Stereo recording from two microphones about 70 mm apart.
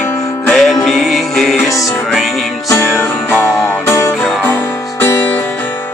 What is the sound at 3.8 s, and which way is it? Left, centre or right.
Music, left.